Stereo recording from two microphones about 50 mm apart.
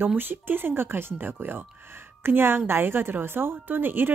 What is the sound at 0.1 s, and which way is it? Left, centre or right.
Speech, right.